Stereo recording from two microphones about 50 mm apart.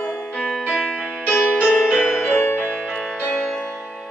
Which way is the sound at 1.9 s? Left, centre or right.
Left.